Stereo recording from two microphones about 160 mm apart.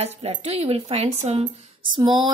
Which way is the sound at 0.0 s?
35° right (ahead or behind).